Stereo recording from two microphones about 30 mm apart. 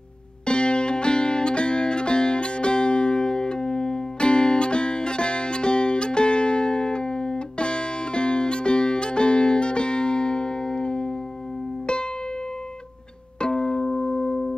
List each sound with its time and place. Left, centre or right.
0.5 s music: left
13.4 s music: left